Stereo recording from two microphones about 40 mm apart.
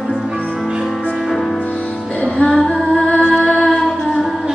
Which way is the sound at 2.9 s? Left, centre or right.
Left.